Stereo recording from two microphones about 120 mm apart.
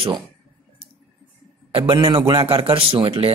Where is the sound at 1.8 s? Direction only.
50° right (ahead or behind).